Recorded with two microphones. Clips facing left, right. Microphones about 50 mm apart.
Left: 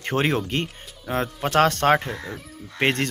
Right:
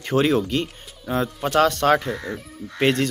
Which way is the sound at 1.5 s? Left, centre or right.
Left.